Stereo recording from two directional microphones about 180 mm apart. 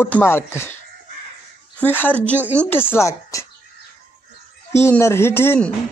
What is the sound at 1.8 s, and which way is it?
Speech, 10° left (ahead or behind).